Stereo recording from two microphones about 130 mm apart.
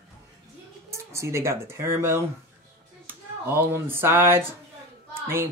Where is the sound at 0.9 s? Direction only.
20° right (ahead or behind).